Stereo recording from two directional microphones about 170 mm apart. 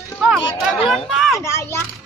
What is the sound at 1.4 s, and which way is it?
Speech, 15° left (ahead or behind).